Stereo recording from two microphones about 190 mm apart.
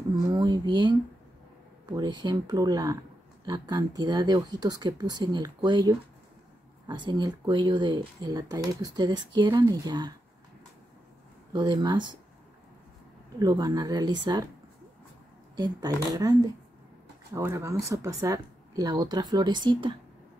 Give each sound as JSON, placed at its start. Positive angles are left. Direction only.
{"t": 0.1, "sound": "speech", "side_deg": -20}
{"t": 11.5, "sound": "speech", "side_deg": -25}
{"t": 13.4, "sound": "speech", "side_deg": -20}
{"t": 15.5, "sound": "speech", "side_deg": -20}